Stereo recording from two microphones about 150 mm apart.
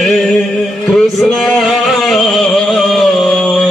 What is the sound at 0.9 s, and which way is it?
Music, centre (ahead or behind).